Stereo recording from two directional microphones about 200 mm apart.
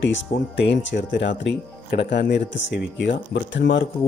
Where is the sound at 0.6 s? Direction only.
60° left (ahead or behind).